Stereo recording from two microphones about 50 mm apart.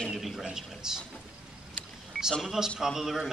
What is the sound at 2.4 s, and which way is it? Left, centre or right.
Speech, centre.